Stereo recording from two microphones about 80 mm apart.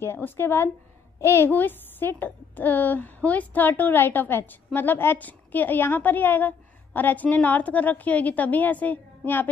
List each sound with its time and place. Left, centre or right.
0.0 s a woman's voice: left
1.5 s a woman's voice: left